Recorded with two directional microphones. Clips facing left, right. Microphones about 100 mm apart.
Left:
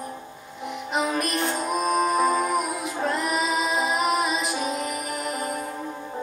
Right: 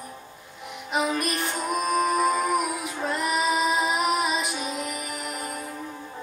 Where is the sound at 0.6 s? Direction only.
Centre (ahead or behind).